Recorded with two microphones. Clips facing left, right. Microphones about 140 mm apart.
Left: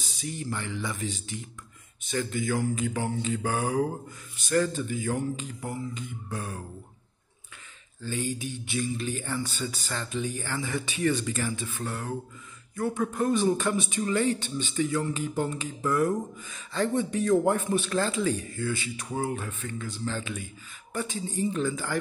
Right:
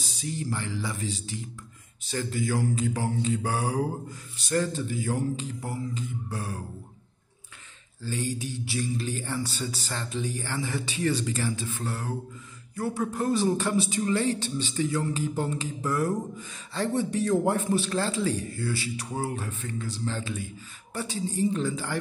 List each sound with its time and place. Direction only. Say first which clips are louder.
0.0 s speech: right 2 dB; 35° right (ahead or behind)
8.0 s a man's voice: even; 35° right (ahead or behind)